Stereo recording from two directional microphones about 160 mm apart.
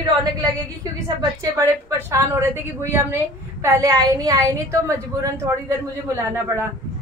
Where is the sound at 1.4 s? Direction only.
20° right (ahead or behind).